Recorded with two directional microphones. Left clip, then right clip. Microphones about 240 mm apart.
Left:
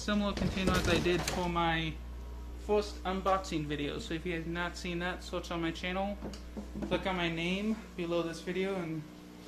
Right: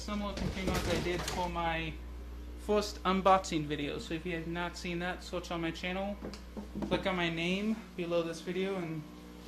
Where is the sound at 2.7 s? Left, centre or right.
Right.